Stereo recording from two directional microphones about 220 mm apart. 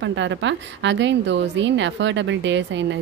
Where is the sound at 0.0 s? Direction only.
55° right (ahead or behind).